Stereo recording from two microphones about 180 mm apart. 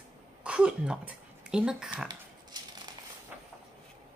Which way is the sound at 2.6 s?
25° right (ahead or behind).